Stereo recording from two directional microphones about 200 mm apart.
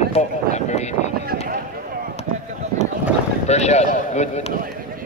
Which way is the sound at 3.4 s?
35° left (ahead or behind).